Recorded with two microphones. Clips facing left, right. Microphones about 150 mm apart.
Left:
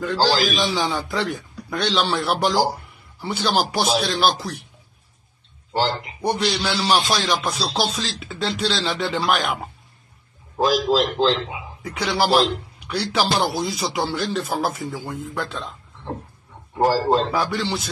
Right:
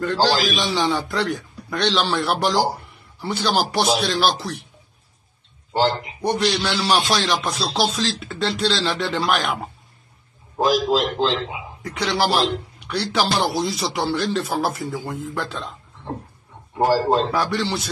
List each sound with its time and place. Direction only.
0.0 s speech: centre (ahead or behind)
6.2 s speech: 5° left (ahead or behind)
10.6 s a man's voice: 25° right (ahead or behind)
11.8 s speech: centre (ahead or behind)
17.3 s speech: centre (ahead or behind)